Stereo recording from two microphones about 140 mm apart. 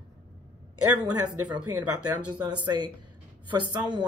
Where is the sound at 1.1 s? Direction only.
30° right (ahead or behind).